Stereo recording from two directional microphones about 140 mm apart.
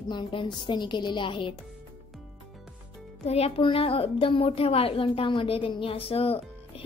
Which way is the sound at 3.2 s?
45° left (ahead or behind).